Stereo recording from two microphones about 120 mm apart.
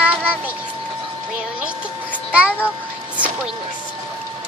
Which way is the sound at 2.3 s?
10° right (ahead or behind).